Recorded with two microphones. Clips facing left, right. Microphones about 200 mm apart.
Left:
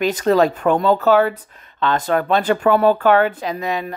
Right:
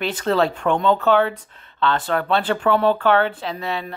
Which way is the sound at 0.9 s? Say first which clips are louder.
Left 2 dB; 5° left (ahead or behind).